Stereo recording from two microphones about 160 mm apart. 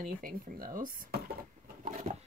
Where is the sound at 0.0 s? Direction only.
60° right (ahead or behind).